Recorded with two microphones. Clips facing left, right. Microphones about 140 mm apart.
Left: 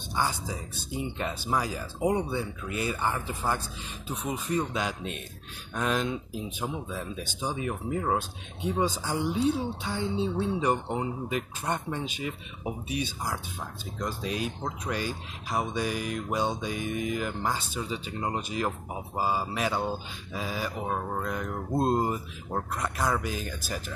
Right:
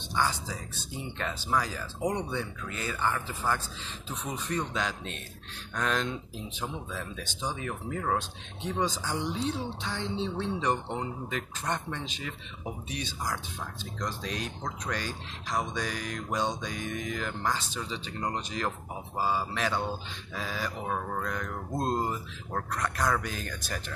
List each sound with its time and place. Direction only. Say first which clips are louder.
0.1 s speech: even; 15° left (ahead or behind)
22.8 s speech: right 1 dB; 5° left (ahead or behind)